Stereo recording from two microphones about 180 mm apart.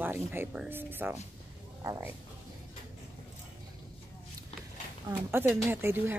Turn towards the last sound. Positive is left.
turn(degrees=-15)  # may be behind; listen again after turning